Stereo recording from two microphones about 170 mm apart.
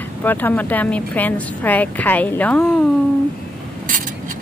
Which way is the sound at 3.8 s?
50° right (ahead or behind).